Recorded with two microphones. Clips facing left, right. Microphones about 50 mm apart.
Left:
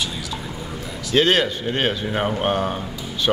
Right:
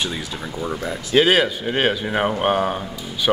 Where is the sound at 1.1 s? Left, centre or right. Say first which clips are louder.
Right 2 dB; centre.